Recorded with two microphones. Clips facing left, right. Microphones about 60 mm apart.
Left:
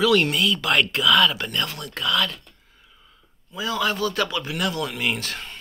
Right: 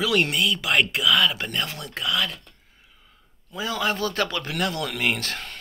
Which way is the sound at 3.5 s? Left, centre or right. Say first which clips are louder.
Left 1 dB; right.